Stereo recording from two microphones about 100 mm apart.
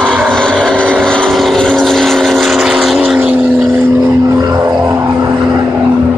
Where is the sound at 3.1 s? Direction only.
15° right (ahead or behind).